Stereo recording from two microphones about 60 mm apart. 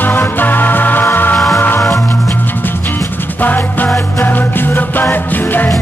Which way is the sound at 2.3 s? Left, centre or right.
Left.